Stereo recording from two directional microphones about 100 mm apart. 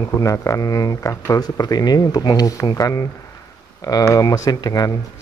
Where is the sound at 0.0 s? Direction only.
35° left (ahead or behind).